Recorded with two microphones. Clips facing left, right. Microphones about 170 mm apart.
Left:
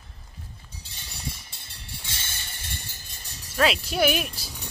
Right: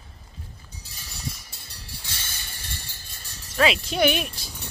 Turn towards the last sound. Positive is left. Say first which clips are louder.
# even
turn(degrees=0)  # may be behind; listen again after turning